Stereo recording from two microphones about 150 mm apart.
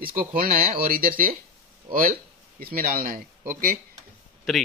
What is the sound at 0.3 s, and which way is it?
Speech, 70° right (ahead or behind).